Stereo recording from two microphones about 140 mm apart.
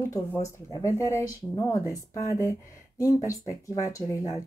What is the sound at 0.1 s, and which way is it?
Speech, 25° left (ahead or behind).